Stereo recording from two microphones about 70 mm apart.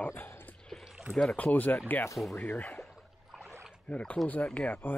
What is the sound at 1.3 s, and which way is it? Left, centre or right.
Speech, left.